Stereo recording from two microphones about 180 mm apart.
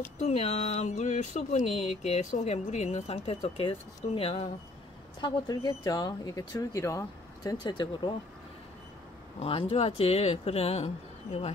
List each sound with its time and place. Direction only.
0.2 s speech: 35° left (ahead or behind)
5.2 s speech: 20° left (ahead or behind)
9.4 s speech: 30° left (ahead or behind)